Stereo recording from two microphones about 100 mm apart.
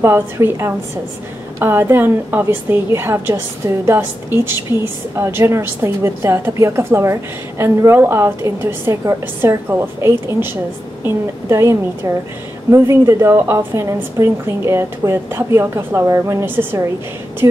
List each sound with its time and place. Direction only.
0.0 s a woman's voice: 25° right (ahead or behind)
17.4 s speech: 40° right (ahead or behind)